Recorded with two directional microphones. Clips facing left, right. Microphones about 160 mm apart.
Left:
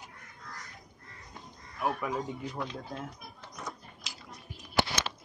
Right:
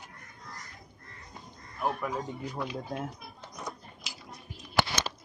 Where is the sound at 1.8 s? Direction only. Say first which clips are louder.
Right 1 dB; centre (ahead or behind).